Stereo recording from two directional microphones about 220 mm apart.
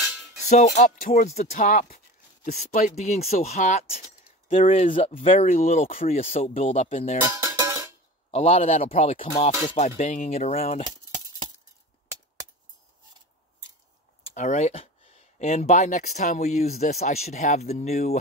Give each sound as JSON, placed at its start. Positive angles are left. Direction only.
{"t": 0.5, "sound": "speech", "side_deg": 35}
{"t": 7.2, "sound": "music", "side_deg": -15}
{"t": 8.3, "sound": "speech", "side_deg": 25}
{"t": 14.2, "sound": "speech", "side_deg": 30}